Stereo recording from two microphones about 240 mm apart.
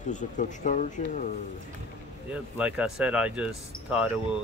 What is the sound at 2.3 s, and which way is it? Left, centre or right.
Speech, centre.